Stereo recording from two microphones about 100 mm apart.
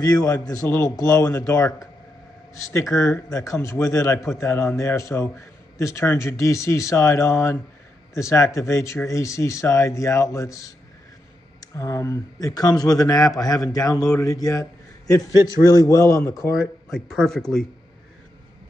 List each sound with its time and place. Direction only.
0.0 s a man's voice: 40° left (ahead or behind)
16.9 s speech: 5° left (ahead or behind)